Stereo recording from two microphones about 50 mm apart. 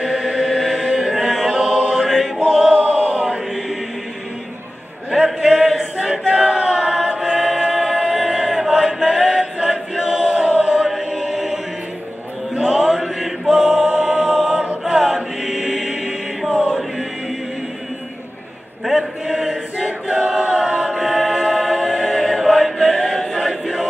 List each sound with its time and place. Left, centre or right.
0.0 s chant: centre
2.0 s music: centre
2.4 s choir: centre
2.8 s chant: right
5.1 s chant: centre
11.1 s choir: centre
12.5 s mantra: centre
13.9 s music: centre
14.9 s chant: centre
15.7 s mantra: centre
18.9 s mantra: centre
20.1 s choir: right
20.4 s a capella: centre
20.9 s music: centre